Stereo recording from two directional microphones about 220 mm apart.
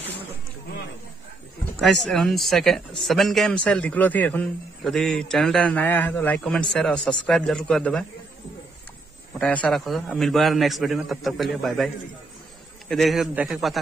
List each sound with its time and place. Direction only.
1.8 s speech: centre (ahead or behind)
9.4 s speech: 5° left (ahead or behind)